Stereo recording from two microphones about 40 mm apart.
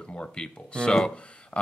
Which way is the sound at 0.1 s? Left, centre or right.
Left.